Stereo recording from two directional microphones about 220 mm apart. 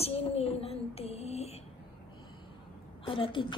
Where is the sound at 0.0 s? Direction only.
25° left (ahead or behind).